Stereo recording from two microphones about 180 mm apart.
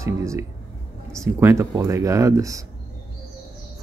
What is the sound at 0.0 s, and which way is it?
Speech, 15° right (ahead or behind).